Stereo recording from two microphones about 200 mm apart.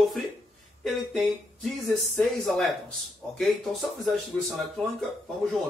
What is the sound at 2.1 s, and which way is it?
Speech, centre (ahead or behind).